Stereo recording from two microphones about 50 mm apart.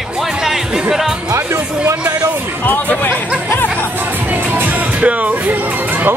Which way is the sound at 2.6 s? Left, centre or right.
Left.